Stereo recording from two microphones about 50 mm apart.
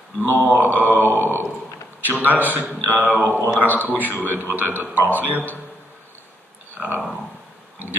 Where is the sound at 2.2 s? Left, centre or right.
Right.